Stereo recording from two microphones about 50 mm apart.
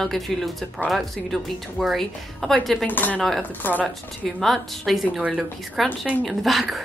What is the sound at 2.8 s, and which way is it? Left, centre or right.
Speech, left.